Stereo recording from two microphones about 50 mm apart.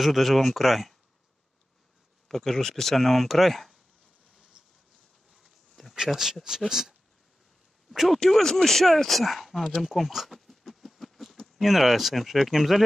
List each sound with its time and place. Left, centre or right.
0.0 s speech: centre
2.2 s speech: centre
5.4 s insect: centre
6.7 s speech: centre
8.2 s speech: centre
10.3 s a sound: centre
11.5 s speech: centre